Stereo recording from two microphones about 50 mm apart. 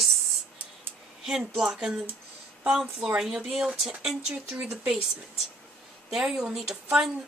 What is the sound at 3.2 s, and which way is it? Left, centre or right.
Speech, centre.